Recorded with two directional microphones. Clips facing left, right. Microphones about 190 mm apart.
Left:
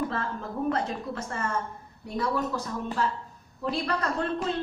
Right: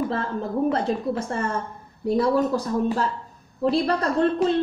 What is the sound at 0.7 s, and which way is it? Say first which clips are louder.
A woman's voice: right 7 dB; 30° right (ahead or behind).